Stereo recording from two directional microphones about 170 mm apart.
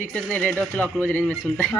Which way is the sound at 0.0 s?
10° left (ahead or behind).